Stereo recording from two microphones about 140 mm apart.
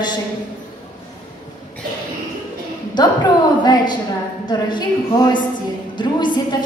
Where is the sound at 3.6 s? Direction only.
30° left (ahead or behind).